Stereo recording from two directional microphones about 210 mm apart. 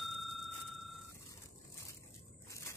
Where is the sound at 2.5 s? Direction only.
15° left (ahead or behind).